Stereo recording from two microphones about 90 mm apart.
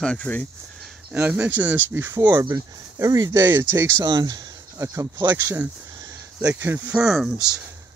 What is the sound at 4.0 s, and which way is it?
Speech, 50° right (ahead or behind).